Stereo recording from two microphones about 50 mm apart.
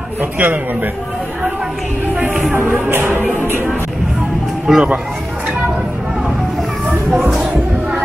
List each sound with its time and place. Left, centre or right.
0.2 s speech: right
2.9 s music: right
4.7 s speech: centre